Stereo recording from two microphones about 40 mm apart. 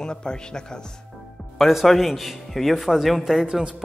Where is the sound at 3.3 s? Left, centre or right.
Centre.